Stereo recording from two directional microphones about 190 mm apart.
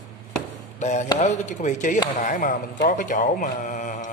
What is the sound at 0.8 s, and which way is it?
Speech, 40° left (ahead or behind).